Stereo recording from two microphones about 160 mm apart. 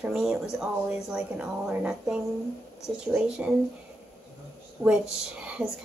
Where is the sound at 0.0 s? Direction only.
5° right (ahead or behind).